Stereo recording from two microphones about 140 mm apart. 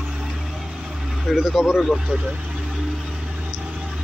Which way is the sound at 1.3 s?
Centre (ahead or behind).